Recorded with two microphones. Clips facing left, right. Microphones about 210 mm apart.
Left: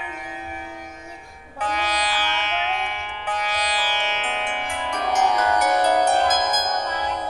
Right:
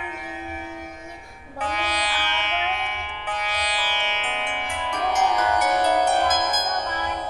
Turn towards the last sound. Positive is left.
turn(degrees=40)  # may be behind; listen again after turning